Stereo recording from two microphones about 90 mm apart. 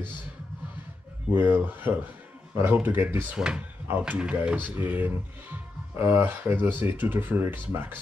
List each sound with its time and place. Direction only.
1.3 s speech: 20° right (ahead or behind)
3.3 s speech: 10° right (ahead or behind)